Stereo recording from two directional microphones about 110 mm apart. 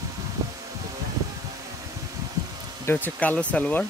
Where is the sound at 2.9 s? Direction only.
15° left (ahead or behind).